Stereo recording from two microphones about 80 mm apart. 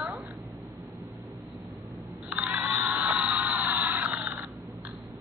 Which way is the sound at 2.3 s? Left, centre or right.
Centre.